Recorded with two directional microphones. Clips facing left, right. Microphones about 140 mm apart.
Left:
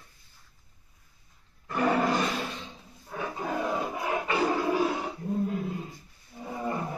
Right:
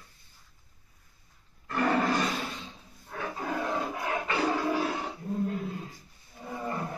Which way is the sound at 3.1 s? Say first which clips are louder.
Left 2 dB; 10° left (ahead or behind).